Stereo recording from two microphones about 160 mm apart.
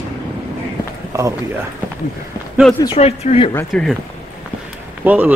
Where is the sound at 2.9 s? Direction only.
40° left (ahead or behind).